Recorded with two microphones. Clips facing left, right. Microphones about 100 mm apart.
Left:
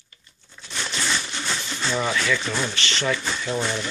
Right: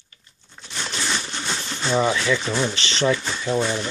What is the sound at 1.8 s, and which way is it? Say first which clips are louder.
Speech: right 4 dB; 20° right (ahead or behind).